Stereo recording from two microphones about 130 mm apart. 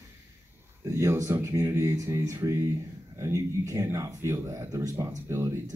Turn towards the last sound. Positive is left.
turn(degrees=-20)  # may be behind; listen again after turning